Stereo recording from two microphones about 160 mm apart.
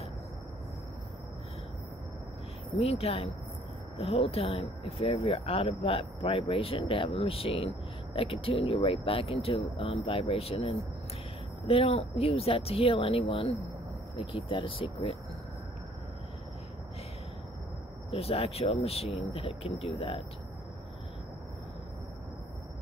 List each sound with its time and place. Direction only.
2.8 s speech: 40° left (ahead or behind)
18.1 s speech: 40° left (ahead or behind)